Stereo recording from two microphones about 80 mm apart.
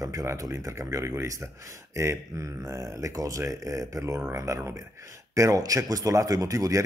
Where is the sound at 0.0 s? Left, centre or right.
Right.